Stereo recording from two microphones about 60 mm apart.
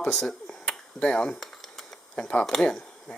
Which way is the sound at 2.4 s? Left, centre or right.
Centre.